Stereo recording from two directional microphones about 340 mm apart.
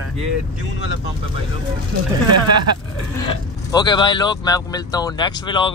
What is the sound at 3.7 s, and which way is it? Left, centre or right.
Speech, centre.